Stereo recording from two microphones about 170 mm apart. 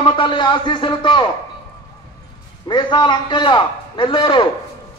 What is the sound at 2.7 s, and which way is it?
A man's voice, 25° left (ahead or behind).